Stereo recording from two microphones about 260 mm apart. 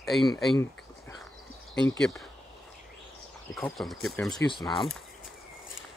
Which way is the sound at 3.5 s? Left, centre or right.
Centre.